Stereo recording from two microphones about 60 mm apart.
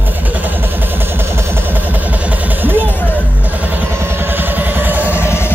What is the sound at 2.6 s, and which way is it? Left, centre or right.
Music, right.